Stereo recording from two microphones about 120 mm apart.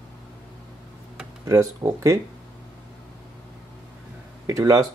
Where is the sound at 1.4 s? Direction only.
25° right (ahead or behind).